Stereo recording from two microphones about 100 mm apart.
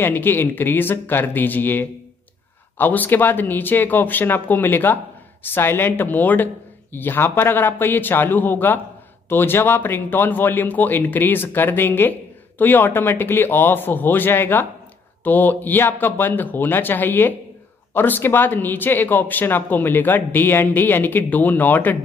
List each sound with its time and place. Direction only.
0.0 s a man's voice: 20° left (ahead or behind)